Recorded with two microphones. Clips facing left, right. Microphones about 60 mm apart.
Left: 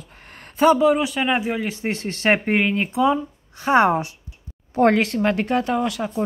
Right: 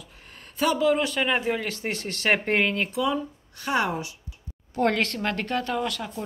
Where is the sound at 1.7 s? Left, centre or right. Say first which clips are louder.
Left 5 dB; left.